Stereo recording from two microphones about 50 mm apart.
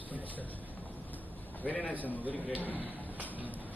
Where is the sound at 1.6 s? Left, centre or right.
Left.